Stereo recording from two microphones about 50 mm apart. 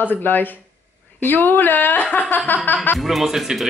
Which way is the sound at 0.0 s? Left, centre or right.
Left.